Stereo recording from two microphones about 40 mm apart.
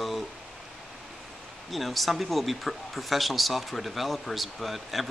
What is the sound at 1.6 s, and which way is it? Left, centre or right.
Speech, centre.